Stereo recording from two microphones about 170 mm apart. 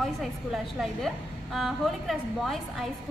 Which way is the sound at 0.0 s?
Centre (ahead or behind).